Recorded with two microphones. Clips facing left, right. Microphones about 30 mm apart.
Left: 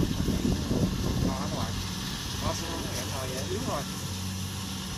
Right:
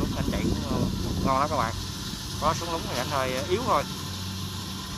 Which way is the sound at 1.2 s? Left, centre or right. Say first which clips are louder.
Right 12 dB; right.